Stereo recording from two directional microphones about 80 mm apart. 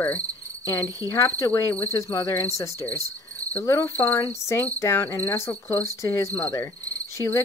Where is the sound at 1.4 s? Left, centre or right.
Left.